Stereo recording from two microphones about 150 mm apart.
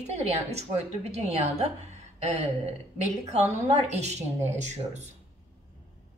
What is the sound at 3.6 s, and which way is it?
Speech, 45° right (ahead or behind).